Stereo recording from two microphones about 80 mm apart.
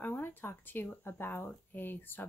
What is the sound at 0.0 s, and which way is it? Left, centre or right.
Speech, left.